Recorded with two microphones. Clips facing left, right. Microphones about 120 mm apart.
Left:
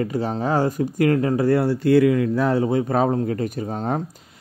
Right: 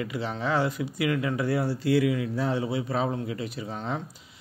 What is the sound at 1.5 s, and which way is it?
A man's voice, 55° left (ahead or behind).